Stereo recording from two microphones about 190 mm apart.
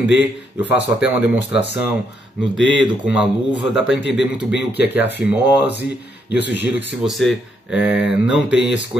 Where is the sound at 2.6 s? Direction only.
75° left (ahead or behind).